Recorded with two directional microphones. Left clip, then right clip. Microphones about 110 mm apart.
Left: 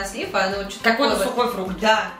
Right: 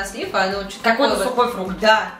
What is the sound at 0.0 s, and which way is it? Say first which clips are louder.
Speech: right 2 dB; 15° right (ahead or behind).